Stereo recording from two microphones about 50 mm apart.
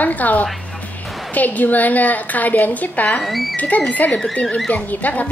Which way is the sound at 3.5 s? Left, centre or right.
Left.